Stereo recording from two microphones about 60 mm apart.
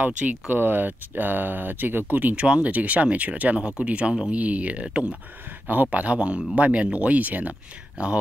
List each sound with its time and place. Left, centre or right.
0.2 s speech: right